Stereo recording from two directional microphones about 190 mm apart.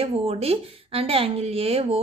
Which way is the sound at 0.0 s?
30° right (ahead or behind).